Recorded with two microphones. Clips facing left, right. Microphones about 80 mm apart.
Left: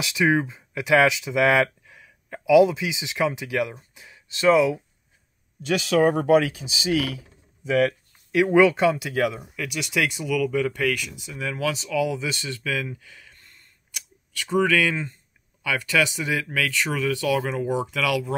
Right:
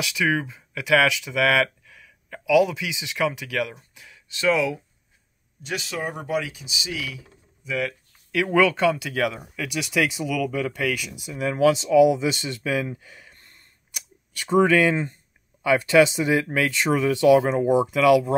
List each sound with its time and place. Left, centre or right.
0.1 s speech: left
5.7 s speech: left
6.0 s speech: left
8.3 s speech: centre
9.4 s speech: centre
11.3 s speech: right
13.0 s a sound: right
14.4 s speech: right